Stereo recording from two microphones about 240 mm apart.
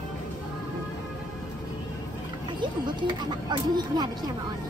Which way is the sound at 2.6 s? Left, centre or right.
Centre.